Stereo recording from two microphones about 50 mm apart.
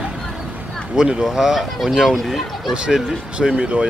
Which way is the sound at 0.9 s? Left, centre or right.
Centre.